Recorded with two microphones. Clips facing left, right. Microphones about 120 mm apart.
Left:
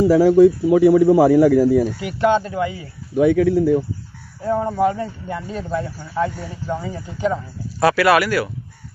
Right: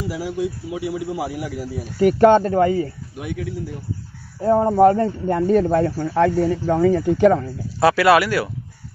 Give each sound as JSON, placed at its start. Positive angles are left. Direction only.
{"t": 0.1, "sound": "speech", "side_deg": 90}
{"t": 0.7, "sound": "speech", "side_deg": 50}
{"t": 1.1, "sound": "speech", "side_deg": 90}
{"t": 2.0, "sound": "speech", "side_deg": -45}
{"t": 3.2, "sound": "speech", "side_deg": 70}
{"t": 4.4, "sound": "speech", "side_deg": -35}
{"t": 7.8, "sound": "speech", "side_deg": -25}